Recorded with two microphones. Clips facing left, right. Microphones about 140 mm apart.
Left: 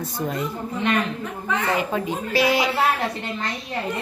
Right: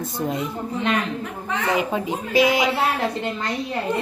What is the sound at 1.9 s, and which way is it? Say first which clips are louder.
Speech: right 2 dB; 20° right (ahead or behind).